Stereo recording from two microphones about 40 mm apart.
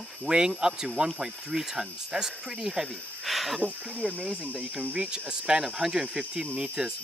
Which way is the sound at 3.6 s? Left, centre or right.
Right.